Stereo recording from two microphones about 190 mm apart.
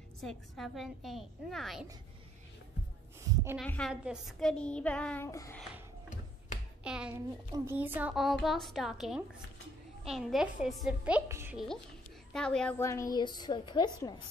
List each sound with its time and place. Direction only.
0.2 s child singing: centre (ahead or behind)
3.6 s a woman's voice: 5° left (ahead or behind)
3.9 s child singing: 5° right (ahead or behind); by 5.6 s 15° left (ahead or behind)
6.8 s a child's voice: 5° right (ahead or behind)
7.5 s child singing: 10° right (ahead or behind)
11.5 s child singing: centre (ahead or behind)
12.3 s a woman's voice: 5° left (ahead or behind); by 13.8 s 25° left (ahead or behind)